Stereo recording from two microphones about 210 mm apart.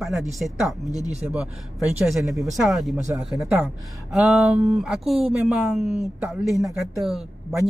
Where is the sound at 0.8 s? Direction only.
15° left (ahead or behind).